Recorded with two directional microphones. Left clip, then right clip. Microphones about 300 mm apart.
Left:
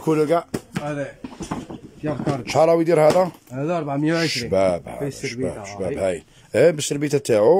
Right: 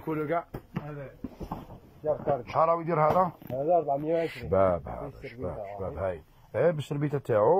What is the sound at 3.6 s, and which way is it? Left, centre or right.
Speech, left.